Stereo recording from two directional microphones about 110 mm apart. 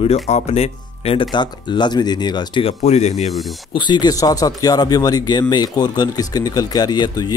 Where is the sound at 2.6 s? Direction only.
80° left.